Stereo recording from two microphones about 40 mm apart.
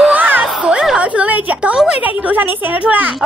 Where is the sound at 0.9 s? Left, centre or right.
Right.